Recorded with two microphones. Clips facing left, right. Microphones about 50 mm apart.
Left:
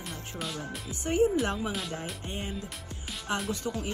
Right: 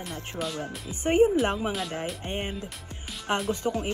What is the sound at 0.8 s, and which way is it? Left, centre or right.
Speech, right.